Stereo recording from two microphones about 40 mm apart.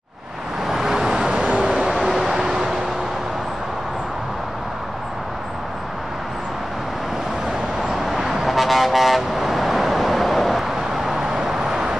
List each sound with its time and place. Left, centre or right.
0.7 s vehicle: centre
1.5 s vehicle: right
1.9 s vehicle: centre
7.9 s vehicle: centre